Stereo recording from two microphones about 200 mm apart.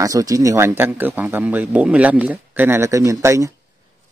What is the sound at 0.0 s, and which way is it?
Speech, 15° right (ahead or behind).